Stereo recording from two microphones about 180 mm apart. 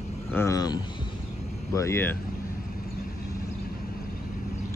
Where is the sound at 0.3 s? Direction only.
15° left (ahead or behind).